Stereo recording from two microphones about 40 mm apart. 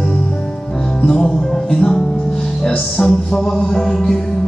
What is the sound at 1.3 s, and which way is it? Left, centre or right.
Music, centre.